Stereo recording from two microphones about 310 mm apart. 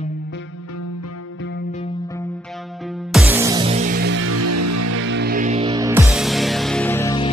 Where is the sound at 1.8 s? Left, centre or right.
Centre.